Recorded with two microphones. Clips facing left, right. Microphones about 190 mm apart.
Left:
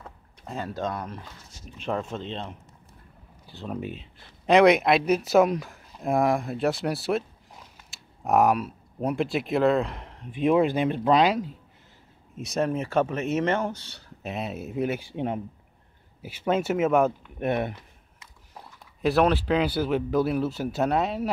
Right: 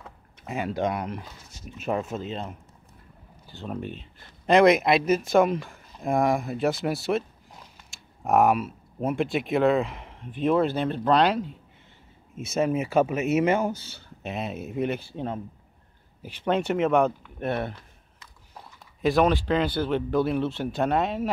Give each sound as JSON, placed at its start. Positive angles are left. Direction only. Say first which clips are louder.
{"t": 0.0, "sound": "a sound", "louder": "even", "side_deg": -10}
{"t": 0.7, "sound": "speech", "louder": "right 4 dB", "side_deg": -15}
{"t": 10.3, "sound": "speech", "louder": "left 1 dB", "side_deg": 10}
{"t": 15.0, "sound": "speech", "louder": "left 2 dB", "side_deg": 15}
{"t": 17.4, "sound": "speech", "louder": "left 2 dB", "side_deg": 15}
{"t": 18.5, "sound": "speech", "louder": "left 1 dB", "side_deg": 0}